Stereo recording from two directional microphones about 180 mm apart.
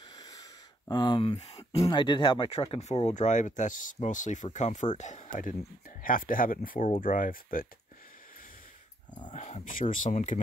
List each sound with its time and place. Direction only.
0.1 s a sound: 20° left (ahead or behind)
1.3 s speech: 35° left (ahead or behind); by 7.6 s 50° left (ahead or behind)
9.3 s speech: 40° left (ahead or behind)